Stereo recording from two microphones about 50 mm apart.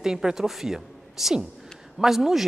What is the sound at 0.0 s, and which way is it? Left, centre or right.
Speech, centre.